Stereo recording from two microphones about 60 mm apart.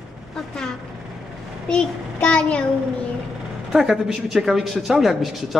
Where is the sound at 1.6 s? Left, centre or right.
Centre.